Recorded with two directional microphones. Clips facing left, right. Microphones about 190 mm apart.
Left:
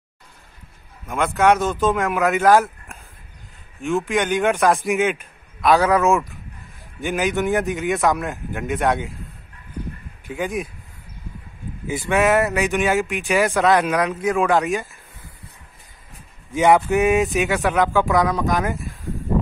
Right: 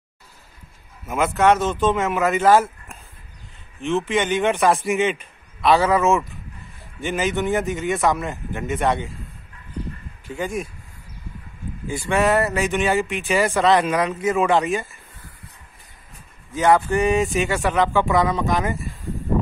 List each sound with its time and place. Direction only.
1.0 s a man's voice: 5° right (ahead or behind)
10.3 s speech: centre (ahead or behind)
12.1 s speech: centre (ahead or behind)
16.5 s speech: 15° left (ahead or behind)
17.0 s speech: centre (ahead or behind)